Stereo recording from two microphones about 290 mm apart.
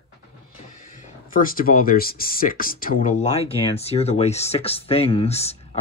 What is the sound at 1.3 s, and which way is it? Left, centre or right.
Speech, left.